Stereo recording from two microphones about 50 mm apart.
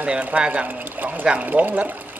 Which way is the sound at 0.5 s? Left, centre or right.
Right.